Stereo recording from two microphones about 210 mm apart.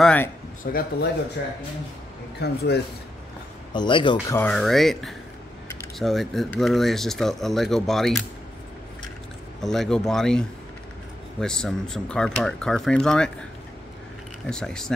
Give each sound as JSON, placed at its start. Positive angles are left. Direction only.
{"t": 0.0, "sound": "a sound", "side_deg": 5}
{"t": 0.7, "sound": "speech", "side_deg": 45}
{"t": 2.4, "sound": "speech", "side_deg": 50}
{"t": 3.7, "sound": "speech", "side_deg": 20}
{"t": 4.4, "sound": "speech", "side_deg": 5}
{"t": 9.6, "sound": "speech", "side_deg": 0}
{"t": 14.5, "sound": "speech", "side_deg": 5}